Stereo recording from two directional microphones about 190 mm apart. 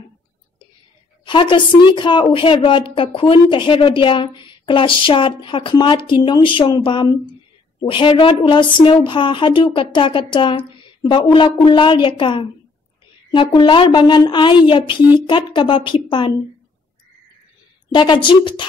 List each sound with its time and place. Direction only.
1.2 s a woman's voice: 25° left (ahead or behind)
17.9 s a woman's voice: 25° left (ahead or behind)